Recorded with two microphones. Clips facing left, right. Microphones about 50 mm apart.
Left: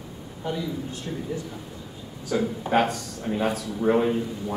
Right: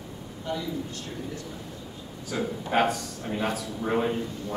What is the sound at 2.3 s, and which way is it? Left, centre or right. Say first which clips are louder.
A man's voice: left 4 dB; centre.